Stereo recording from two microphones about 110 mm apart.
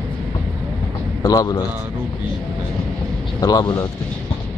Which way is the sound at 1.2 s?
35° left (ahead or behind).